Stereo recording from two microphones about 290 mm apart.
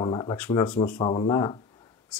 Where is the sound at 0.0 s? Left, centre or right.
Centre.